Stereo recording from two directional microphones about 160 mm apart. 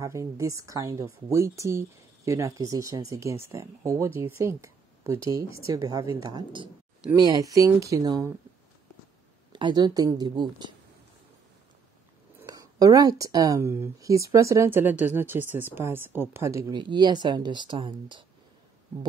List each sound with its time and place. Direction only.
0.0 s speech: 20° right (ahead or behind)
9.5 s speech: 30° right (ahead or behind)
12.4 s speech: 25° right (ahead or behind)
16.7 s speech: 30° right (ahead or behind)